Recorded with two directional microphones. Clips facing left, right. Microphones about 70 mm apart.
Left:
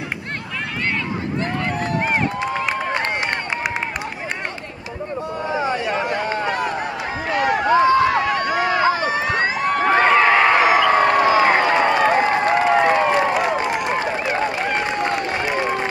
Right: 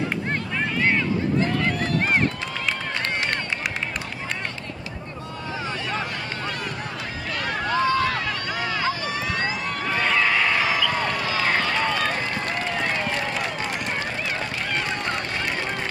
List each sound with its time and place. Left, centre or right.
2.4 s run: left
5.5 s a sound: left
7.2 s run: left
8.5 s run: left
9.0 s crowd: left
11.2 s a sound: left
13.8 s run: left